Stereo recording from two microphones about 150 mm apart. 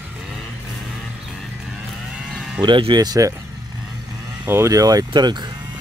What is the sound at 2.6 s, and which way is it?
Speech, 30° right (ahead or behind).